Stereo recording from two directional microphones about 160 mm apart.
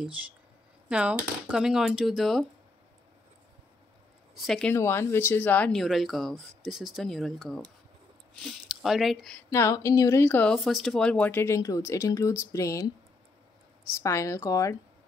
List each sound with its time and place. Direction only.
0.8 s speech: 5° right (ahead or behind)
4.4 s speech: centre (ahead or behind)
4.7 s speech: 15° left (ahead or behind)
9.5 s speech: 20° left (ahead or behind)